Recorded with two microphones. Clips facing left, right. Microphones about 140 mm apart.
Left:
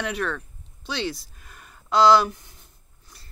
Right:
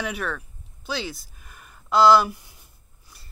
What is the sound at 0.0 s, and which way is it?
Speech, 5° right (ahead or behind).